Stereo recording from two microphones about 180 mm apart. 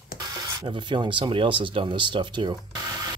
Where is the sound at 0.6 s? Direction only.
25° right (ahead or behind).